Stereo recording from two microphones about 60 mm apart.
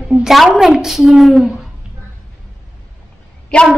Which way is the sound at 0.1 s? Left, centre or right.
Centre.